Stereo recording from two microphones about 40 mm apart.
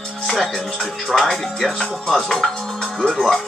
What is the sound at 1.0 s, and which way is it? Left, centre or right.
Music, centre.